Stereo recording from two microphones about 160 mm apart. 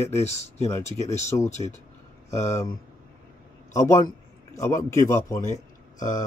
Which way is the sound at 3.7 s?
20° left (ahead or behind).